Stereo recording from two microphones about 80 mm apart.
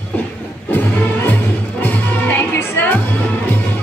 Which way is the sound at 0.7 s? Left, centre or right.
Left.